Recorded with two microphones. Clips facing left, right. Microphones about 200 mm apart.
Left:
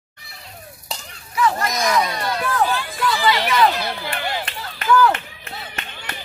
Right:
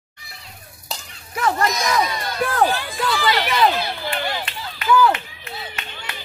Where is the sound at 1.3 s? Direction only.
50° right (ahead or behind).